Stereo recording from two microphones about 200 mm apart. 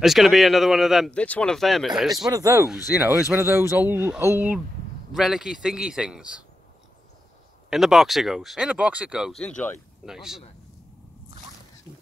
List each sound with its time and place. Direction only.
0.0 s speech: centre (ahead or behind)
2.2 s speech: 15° right (ahead or behind)
7.7 s speech: centre (ahead or behind)
9.4 s speech: 5° left (ahead or behind)